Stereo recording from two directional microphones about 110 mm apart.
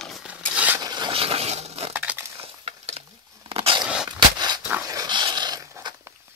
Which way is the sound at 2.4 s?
65° right (ahead or behind).